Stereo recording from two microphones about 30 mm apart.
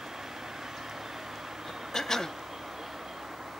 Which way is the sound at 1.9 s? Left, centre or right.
Centre.